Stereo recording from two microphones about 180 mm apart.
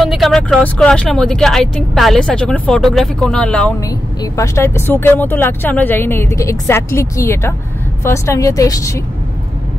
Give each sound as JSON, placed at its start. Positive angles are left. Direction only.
{"t": 0.0, "sound": "speech", "side_deg": 0}
{"t": 3.8, "sound": "speech", "side_deg": 15}